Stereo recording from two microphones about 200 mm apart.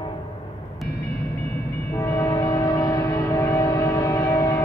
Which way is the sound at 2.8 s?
20° left (ahead or behind).